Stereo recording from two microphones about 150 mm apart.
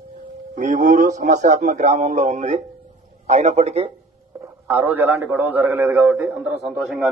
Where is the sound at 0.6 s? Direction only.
55° right (ahead or behind).